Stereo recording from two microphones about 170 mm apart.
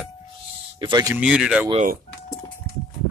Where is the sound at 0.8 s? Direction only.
25° right (ahead or behind).